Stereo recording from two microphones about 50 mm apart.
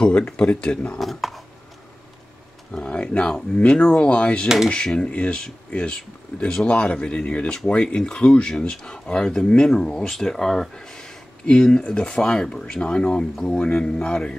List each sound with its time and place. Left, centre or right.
0.0 s speech: centre
0.9 s speech: centre
2.7 s speech: centre